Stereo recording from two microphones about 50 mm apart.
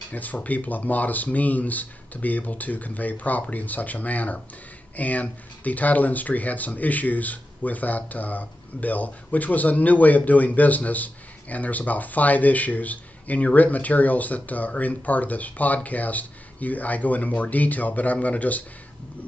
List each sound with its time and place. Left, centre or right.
0.1 s speech: left